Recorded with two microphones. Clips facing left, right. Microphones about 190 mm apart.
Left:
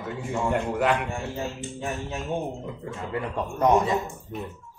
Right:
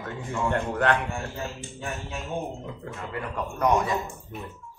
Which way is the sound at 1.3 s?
25° left (ahead or behind).